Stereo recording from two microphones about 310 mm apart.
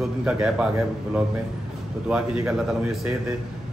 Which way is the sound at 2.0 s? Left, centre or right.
Centre.